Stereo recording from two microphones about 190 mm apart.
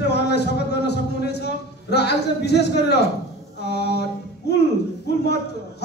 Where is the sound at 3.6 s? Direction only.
60° left (ahead or behind).